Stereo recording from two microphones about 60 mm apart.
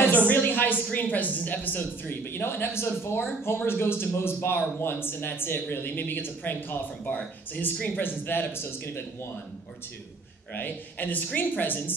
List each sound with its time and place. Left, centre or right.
0.3 s a sound: left
0.9 s a man's voice: left
10.5 s a man's voice: left